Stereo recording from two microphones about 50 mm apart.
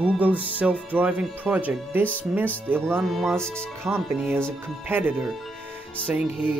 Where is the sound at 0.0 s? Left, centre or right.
Right.